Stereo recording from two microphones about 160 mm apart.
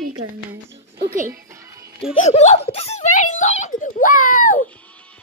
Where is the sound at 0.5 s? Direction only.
90° right.